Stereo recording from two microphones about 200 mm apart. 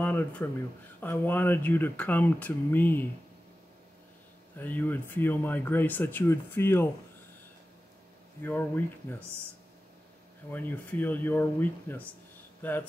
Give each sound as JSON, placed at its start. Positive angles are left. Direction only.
{"t": 0.0, "sound": "speech", "side_deg": 10}
{"t": 4.6, "sound": "speech", "side_deg": 10}
{"t": 8.4, "sound": "speech", "side_deg": 10}
{"t": 10.5, "sound": "speech", "side_deg": 10}